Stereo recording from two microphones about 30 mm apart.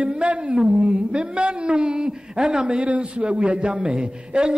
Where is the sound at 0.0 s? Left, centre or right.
Right.